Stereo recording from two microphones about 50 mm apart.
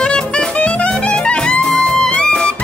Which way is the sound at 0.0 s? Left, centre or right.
Centre.